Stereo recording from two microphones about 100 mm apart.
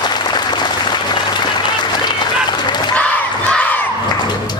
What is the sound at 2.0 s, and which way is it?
Run, 45° left (ahead or behind).